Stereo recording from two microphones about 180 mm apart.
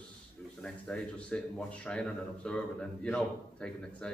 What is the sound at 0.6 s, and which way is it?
Speech, 5° left (ahead or behind).